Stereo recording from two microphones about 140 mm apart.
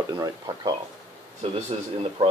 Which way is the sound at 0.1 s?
30° right (ahead or behind).